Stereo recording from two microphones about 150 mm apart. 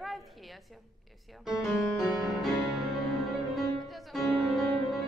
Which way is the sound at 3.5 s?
Centre (ahead or behind).